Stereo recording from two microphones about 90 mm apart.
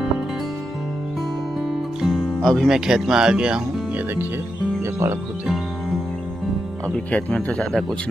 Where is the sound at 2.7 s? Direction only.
5° right (ahead or behind); by 5.4 s 30° right (ahead or behind).